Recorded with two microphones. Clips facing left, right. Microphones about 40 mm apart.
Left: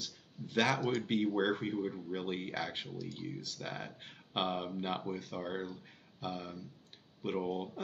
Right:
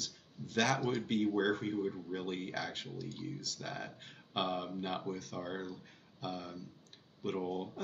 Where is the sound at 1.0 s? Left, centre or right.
Centre.